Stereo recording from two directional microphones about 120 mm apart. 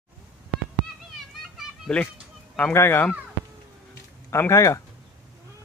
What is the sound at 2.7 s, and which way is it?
Speech, 20° left (ahead or behind).